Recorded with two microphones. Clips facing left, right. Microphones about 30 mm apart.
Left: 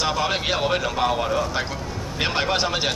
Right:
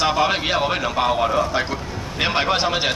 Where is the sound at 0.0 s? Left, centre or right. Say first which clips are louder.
Right 4 dB; centre.